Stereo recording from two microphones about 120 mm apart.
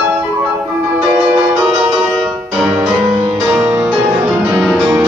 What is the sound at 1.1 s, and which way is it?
Music, 5° right (ahead or behind).